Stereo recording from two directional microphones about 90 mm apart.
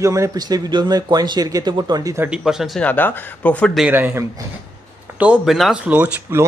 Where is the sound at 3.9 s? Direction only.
20° right (ahead or behind).